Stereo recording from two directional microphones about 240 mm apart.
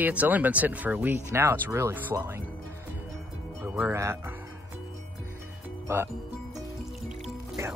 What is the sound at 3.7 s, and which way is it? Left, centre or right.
Speech, centre.